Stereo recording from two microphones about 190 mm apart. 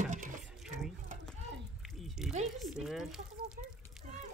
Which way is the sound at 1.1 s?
40° right (ahead or behind).